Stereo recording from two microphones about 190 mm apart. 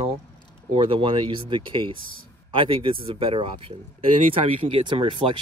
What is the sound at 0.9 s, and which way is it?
Speech, 25° right (ahead or behind).